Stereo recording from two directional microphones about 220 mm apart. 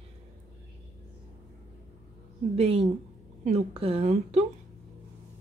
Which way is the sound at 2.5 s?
25° right (ahead or behind).